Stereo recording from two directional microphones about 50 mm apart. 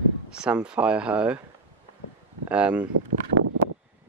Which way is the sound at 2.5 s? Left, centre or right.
Right.